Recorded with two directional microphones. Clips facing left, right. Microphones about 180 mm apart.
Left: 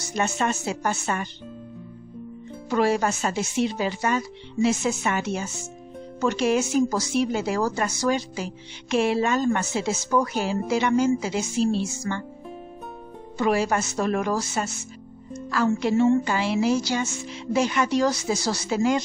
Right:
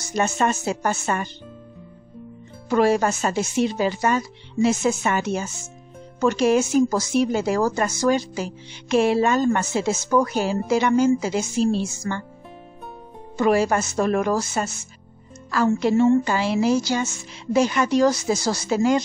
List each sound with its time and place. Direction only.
0.1 s speech: 45° right (ahead or behind)
2.7 s speech: 45° right (ahead or behind)
13.4 s speech: 45° right (ahead or behind)